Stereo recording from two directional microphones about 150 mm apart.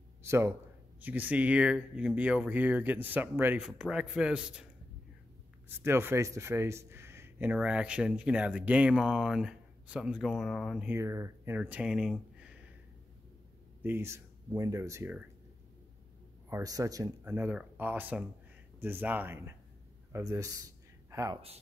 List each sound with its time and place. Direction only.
0.2 s a man's voice: 15° right (ahead or behind)
5.7 s a man's voice: 15° right (ahead or behind); by 10.9 s centre (ahead or behind)
10.9 s speech: 20° right (ahead or behind); by 12.5 s 5° right (ahead or behind)
13.8 s a man's voice: 15° right (ahead or behind)
16.4 s speech: 20° right (ahead or behind)
17.2 s a man's voice: 10° right (ahead or behind)